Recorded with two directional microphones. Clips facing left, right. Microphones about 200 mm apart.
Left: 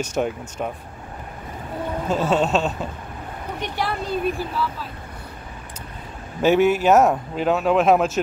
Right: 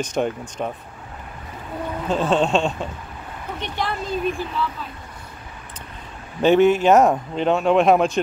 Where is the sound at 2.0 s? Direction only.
10° left (ahead or behind).